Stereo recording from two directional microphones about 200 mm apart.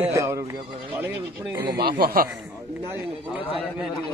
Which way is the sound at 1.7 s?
50° right (ahead or behind).